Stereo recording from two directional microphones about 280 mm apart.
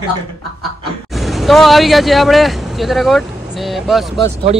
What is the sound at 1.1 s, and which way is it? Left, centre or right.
Speech, centre.